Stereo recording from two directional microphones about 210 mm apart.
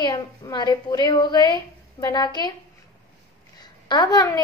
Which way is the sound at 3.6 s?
20° left (ahead or behind).